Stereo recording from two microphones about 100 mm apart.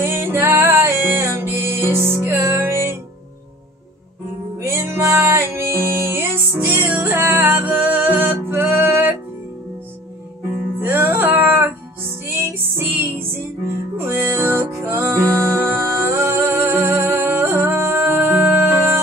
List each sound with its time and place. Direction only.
0.0 s music: 25° right (ahead or behind)
4.6 s music: 25° right (ahead or behind)
10.8 s music: 20° right (ahead or behind)